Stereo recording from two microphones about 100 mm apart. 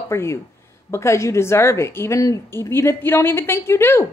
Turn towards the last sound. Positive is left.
turn(degrees=25)  # may be behind; listen again after turning